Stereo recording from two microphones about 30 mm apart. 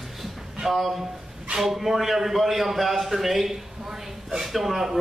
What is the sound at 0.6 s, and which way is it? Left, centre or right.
A man's voice, centre.